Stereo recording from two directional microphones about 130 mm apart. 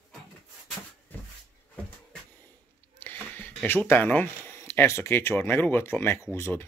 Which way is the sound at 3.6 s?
15° left (ahead or behind).